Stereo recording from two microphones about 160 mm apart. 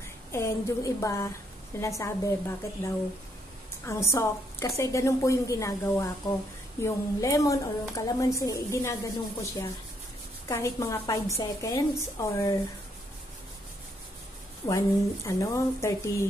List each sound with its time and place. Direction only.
0.3 s a woman's voice: 20° left (ahead or behind)
14.6 s speech: 35° left (ahead or behind)
15.2 s a woman's voice: 20° left (ahead or behind)